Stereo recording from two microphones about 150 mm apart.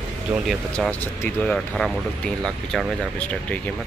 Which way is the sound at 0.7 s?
10° left (ahead or behind).